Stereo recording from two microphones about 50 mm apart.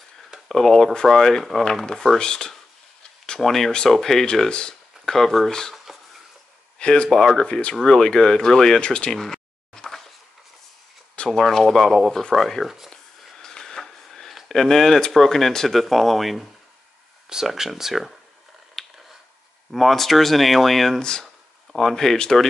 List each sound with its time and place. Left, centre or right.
0.5 s speech: centre
3.3 s speech: centre
4.5 s speech: centre
5.0 s speech: centre
5.5 s speech: centre
6.8 s speech: centre
9.1 s a sound: centre
11.2 s speech: centre
13.4 s a sound: centre
14.5 s speech: centre
18.8 s a sound: centre
19.7 s speech: centre